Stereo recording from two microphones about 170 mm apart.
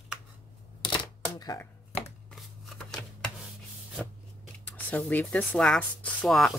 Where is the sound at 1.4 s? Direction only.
20° left (ahead or behind).